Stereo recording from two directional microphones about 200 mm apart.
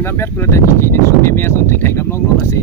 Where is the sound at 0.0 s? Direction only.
10° left (ahead or behind).